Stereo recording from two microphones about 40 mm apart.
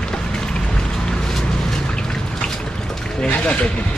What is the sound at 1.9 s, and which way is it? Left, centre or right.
Drip, left.